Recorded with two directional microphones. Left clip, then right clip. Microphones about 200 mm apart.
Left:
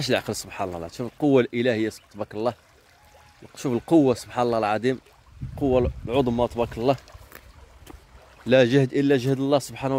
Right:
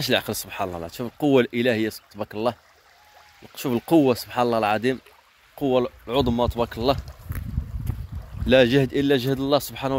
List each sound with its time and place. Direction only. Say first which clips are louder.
0.0 s speech: right 1 dB; 15° left (ahead or behind)
3.5 s speech: even; 5° left (ahead or behind)
8.5 s speech: right 1 dB; 10° left (ahead or behind)